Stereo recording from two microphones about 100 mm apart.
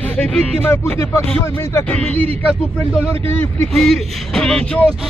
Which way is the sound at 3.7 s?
5° left (ahead or behind).